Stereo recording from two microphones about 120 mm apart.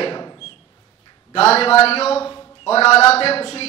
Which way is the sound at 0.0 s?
40° left (ahead or behind).